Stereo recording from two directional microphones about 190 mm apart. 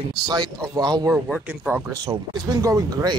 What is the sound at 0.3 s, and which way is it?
Speech, 20° right (ahead or behind).